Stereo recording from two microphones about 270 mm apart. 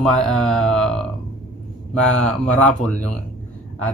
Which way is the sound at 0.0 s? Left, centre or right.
Centre.